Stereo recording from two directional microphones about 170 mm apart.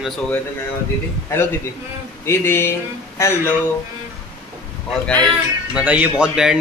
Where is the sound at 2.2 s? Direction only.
15° left (ahead or behind).